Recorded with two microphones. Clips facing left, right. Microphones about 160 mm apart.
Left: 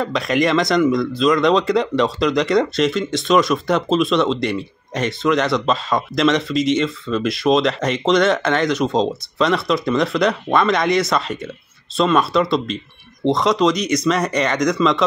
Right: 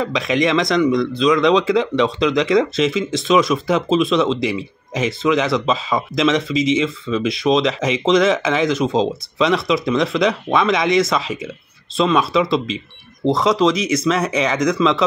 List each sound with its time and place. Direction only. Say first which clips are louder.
0.0 s speech: even; centre (ahead or behind)